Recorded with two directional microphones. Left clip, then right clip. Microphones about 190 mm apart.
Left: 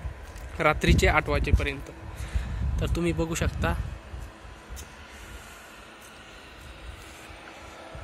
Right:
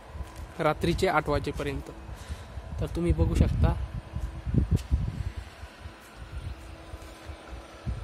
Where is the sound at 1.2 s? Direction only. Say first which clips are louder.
Left 1 dB; 25° right (ahead or behind).